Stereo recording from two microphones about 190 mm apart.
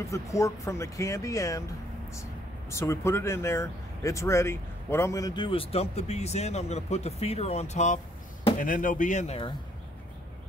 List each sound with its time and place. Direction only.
0.1 s speech: 15° left (ahead or behind)
2.7 s speech: 15° left (ahead or behind); by 9.5 s 35° left (ahead or behind)